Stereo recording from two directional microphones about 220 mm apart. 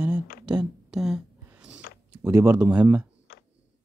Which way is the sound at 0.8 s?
Centre (ahead or behind).